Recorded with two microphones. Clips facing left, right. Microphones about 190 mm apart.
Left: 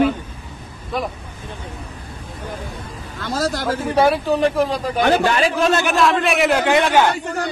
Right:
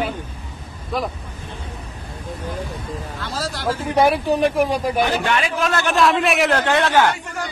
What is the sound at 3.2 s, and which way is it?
Speech, 45° left (ahead or behind).